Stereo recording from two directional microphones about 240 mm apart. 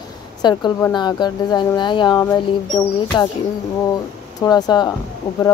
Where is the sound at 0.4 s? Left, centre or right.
Centre.